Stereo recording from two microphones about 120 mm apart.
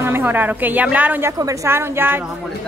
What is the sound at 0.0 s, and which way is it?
A woman's voice, 15° right (ahead or behind).